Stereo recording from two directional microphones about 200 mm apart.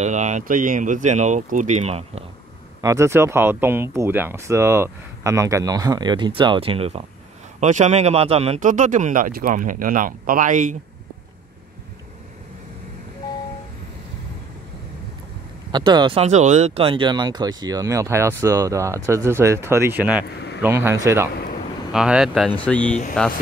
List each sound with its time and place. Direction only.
0.0 s speech: 35° right (ahead or behind)
2.8 s speech: 15° right (ahead or behind); by 10.8 s 40° right (ahead or behind)
15.7 s speech: 20° right (ahead or behind)
21.9 s speech: 5° right (ahead or behind)